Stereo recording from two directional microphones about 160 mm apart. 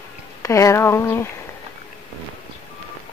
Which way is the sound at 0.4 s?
20° left (ahead or behind).